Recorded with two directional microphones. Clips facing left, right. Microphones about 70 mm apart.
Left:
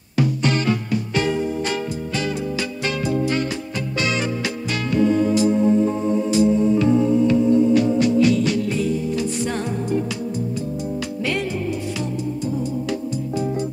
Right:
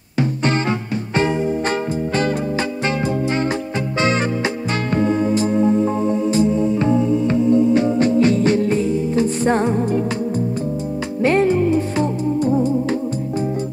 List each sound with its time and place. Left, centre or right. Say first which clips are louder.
0.5 s music: right 1 dB; right
4.0 s music: right 5 dB; right
6.3 s music: left 3 dB; right
11.2 s music: right 11 dB; right